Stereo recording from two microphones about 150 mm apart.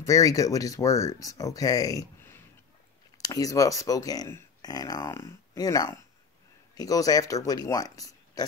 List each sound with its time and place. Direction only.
0.0 s speech: 20° left (ahead or behind)